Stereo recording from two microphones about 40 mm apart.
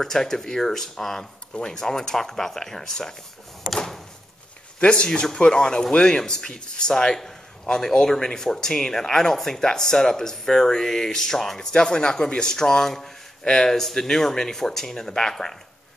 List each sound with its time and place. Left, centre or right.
0.0 s speech: centre
3.7 s a sound: centre
4.7 s speech: left; by 11.6 s centre
11.7 s speech: left